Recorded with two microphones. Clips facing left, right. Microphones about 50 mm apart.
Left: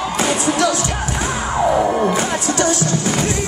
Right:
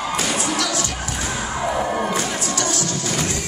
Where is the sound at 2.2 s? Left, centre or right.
Left.